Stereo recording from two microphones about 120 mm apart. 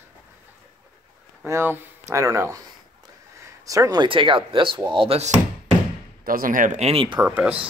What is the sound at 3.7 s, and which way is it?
Speech, 30° right (ahead or behind).